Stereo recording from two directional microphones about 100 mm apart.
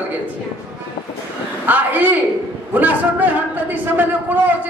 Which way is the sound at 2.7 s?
15° right (ahead or behind).